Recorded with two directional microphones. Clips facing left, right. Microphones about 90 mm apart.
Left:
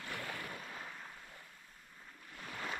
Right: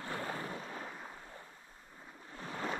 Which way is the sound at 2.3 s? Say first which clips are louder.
Right 4 dB; 30° right (ahead or behind).